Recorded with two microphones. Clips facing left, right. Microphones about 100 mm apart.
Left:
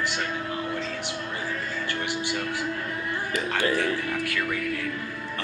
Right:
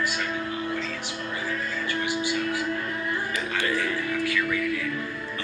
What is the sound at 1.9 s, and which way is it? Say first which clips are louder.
Music: right 3 dB; 60° left (ahead or behind).